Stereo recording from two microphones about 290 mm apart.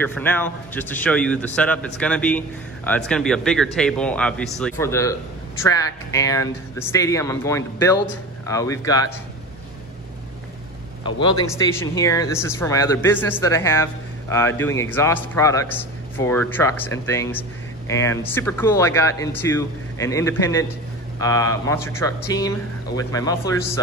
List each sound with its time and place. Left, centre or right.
0.0 s a man's voice: centre
11.1 s a man's voice: centre